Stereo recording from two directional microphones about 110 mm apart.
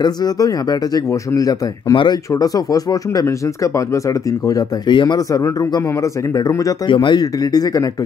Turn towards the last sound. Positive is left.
turn(degrees=30)  # may be behind; listen again after turning